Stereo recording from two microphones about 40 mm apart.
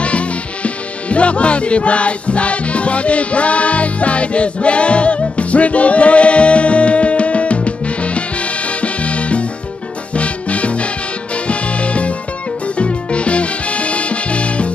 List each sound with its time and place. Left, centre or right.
0.0 s music: left